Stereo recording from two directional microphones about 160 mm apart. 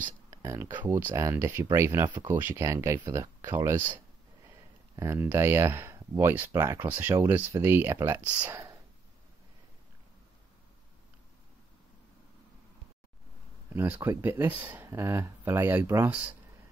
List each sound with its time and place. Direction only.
0.4 s speech: 15° right (ahead or behind)
2.3 s speech: 15° right (ahead or behind)
4.9 s speech: 15° right (ahead or behind)
14.0 s speech: 15° right (ahead or behind)